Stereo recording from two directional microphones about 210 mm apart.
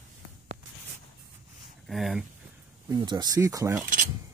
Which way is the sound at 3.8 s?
40° right (ahead or behind).